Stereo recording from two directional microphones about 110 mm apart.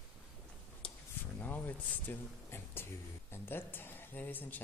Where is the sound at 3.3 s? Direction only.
20° left (ahead or behind).